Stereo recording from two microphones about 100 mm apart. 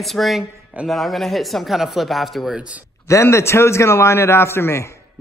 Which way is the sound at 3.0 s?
30° left (ahead or behind).